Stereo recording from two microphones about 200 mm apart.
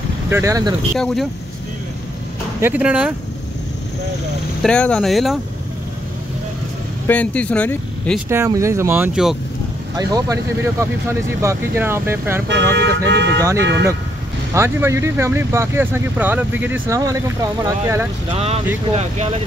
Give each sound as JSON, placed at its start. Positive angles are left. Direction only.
{"t": 0.3, "sound": "speech", "side_deg": -15}
{"t": 0.9, "sound": "speech", "side_deg": 0}
{"t": 2.6, "sound": "speech", "side_deg": -5}
{"t": 4.6, "sound": "speech", "side_deg": 5}
{"t": 7.1, "sound": "speech", "side_deg": 5}
{"t": 8.3, "sound": "speech", "side_deg": -15}
{"t": 9.9, "sound": "speech", "side_deg": -15}
{"t": 12.4, "sound": "speech", "side_deg": -60}
{"t": 14.5, "sound": "speech", "side_deg": -15}
{"t": 18.9, "sound": "speech", "side_deg": -35}